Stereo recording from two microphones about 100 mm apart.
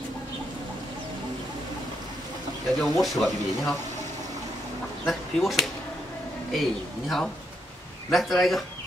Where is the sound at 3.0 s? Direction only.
Centre (ahead or behind).